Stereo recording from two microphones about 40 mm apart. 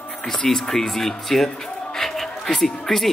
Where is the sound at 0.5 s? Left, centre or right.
Centre.